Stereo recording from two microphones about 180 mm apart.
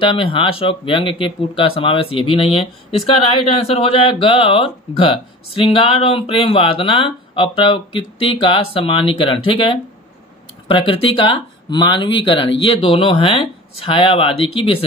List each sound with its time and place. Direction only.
0.0 s speech: 30° left (ahead or behind)
3.4 s speech: 35° left (ahead or behind)